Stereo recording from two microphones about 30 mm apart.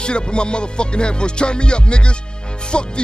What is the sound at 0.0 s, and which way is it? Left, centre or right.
Music, left.